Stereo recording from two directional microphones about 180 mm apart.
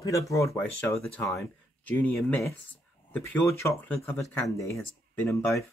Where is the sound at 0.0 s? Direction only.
20° left (ahead or behind).